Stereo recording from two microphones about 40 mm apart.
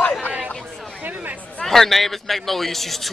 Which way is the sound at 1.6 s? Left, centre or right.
Centre.